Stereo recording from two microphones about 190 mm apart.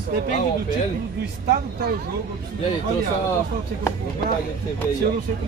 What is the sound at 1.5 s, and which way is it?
Speech, 55° right (ahead or behind).